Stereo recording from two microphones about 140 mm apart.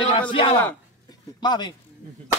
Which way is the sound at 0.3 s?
40° left (ahead or behind).